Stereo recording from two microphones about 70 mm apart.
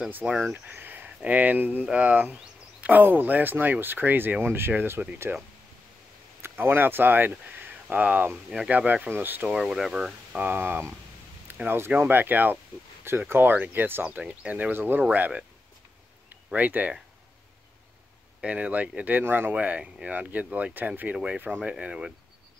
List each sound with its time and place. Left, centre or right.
0.4 s speech: right
5.3 s speech: centre
6.4 s speech: right
9.5 s speech: centre
10.4 s speech: right
14.0 s speech: centre
16.5 s speech: right
18.4 s speech: centre
19.5 s speech: centre